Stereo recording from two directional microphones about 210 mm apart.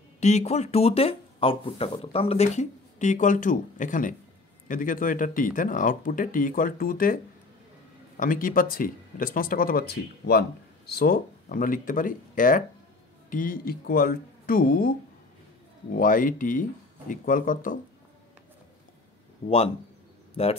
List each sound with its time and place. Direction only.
0.2 s speech: 35° left (ahead or behind)
8.2 s speech: 40° left (ahead or behind)
20.4 s speech: 30° left (ahead or behind)